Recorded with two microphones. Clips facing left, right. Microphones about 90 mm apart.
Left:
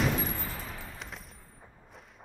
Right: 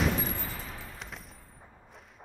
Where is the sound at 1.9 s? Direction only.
Centre (ahead or behind).